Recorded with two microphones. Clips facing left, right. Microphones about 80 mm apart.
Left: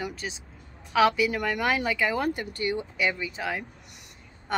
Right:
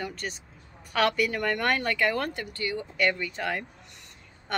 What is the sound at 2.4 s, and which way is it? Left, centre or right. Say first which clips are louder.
Speech: left 3 dB; left.